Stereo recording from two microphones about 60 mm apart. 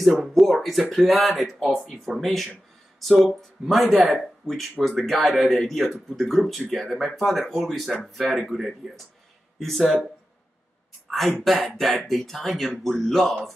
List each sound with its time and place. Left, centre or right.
0.0 s speech: centre
11.1 s speech: centre